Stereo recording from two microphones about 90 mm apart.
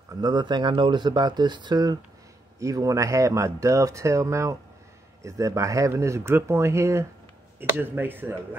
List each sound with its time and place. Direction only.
0.1 s speech: 50° right (ahead or behind)
2.6 s speech: 40° right (ahead or behind); by 8.4 s 20° right (ahead or behind)